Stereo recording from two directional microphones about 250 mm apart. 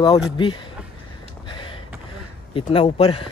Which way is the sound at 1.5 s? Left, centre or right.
Centre.